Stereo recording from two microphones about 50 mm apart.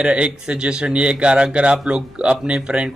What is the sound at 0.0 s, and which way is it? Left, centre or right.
Speech, right.